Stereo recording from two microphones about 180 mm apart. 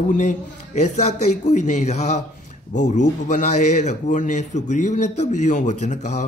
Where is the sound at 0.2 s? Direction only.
40° left (ahead or behind).